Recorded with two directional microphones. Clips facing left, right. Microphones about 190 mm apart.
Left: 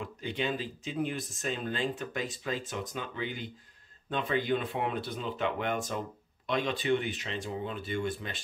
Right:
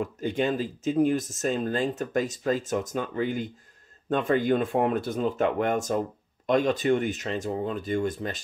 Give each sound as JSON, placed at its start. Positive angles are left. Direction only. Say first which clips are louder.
{"t": 0.0, "sound": "speech", "louder": "right 7 dB", "side_deg": -45}